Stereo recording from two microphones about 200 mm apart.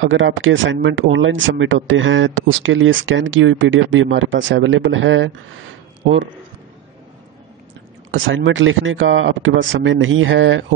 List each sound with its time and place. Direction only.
0.0 s speech: 75° right (ahead or behind)
8.1 s speech: 70° right (ahead or behind)